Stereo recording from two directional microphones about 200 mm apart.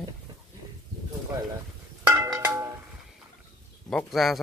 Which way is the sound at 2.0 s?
15° right (ahead or behind).